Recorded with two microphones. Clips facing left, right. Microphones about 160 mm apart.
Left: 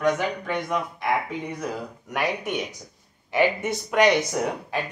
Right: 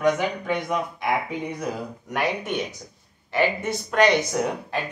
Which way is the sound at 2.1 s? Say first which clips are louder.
Right 1 dB; 15° left (ahead or behind).